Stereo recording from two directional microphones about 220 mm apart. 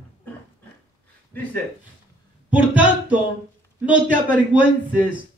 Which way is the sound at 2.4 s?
5° right (ahead or behind).